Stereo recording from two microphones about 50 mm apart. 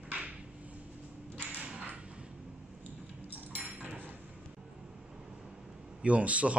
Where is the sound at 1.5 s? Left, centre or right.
Right.